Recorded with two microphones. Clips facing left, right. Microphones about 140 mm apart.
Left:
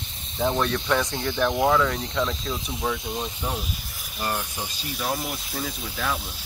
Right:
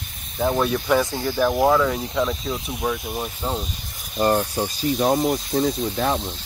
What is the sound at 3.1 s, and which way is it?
Speech, 15° right (ahead or behind).